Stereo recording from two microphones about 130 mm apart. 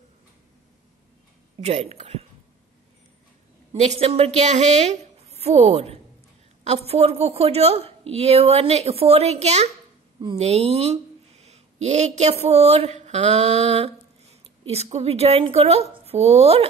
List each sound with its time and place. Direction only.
1.6 s speech: 55° right (ahead or behind)
3.7 s a woman's voice: 55° right (ahead or behind)